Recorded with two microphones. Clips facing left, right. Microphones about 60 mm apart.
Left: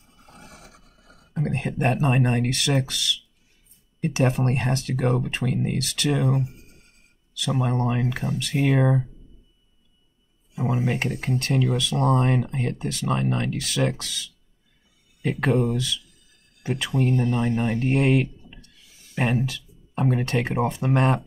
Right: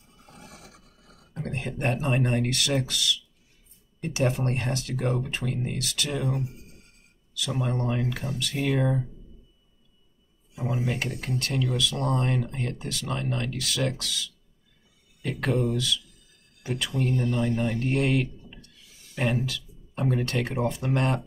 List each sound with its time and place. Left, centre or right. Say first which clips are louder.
1.6 s speech: left 4 dB; left
4.0 s speech: left 4 dB; left
5.7 s speech: left 6 dB; left
7.3 s speech: left 4 dB; left
8.7 s speech: left 4 dB; left
10.7 s speech: left 4 dB; left
15.7 s speech: left 1 dB; left
19.1 s a sound: left 3 dB; left
20.2 s speech: left 4 dB; left